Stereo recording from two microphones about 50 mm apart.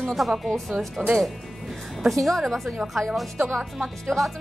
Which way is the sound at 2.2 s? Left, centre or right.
Centre.